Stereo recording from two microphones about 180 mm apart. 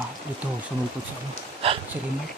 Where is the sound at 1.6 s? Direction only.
30° right (ahead or behind).